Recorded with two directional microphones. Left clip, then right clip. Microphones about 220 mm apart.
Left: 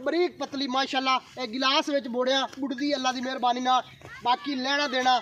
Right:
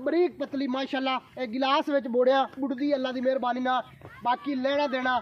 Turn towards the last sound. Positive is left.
turn(degrees=-50)  # may be behind; listen again after turning